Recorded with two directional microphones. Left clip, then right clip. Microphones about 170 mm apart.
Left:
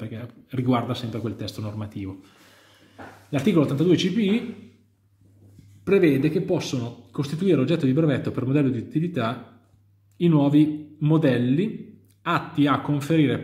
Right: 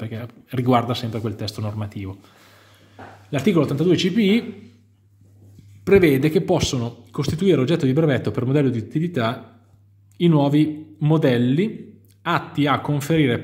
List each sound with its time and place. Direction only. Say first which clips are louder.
0.0 s speech: right 4 dB; 20° right (ahead or behind)
5.9 s a man's voice: right 4 dB; 35° right (ahead or behind)